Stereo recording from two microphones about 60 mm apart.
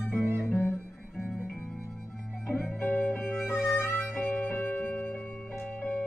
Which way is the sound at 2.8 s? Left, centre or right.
Left.